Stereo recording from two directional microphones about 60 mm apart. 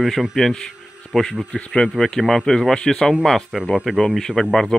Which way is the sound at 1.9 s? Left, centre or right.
Centre.